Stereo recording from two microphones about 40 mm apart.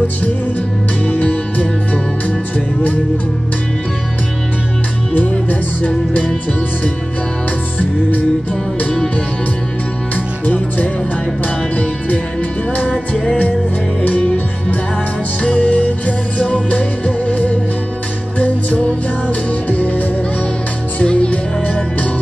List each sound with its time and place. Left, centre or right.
1.0 s music: left
5.3 s music: left
10.4 s music: left
14.1 s music: left
18.4 s music: left
19.7 s music: left
21.0 s music: left